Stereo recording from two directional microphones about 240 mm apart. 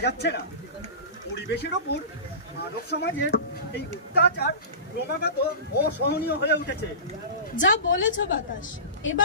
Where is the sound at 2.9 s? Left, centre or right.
Left.